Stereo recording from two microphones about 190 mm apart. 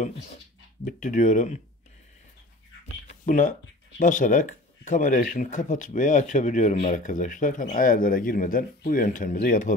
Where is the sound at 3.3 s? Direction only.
40° left (ahead or behind).